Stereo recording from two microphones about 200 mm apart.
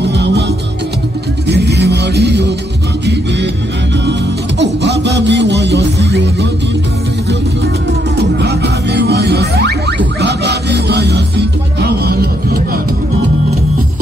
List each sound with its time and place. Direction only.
0.0 s music: 60° right (ahead or behind)
1.5 s music: 55° right (ahead or behind)
4.6 s music: 60° right (ahead or behind)
8.4 s music: 55° right (ahead or behind)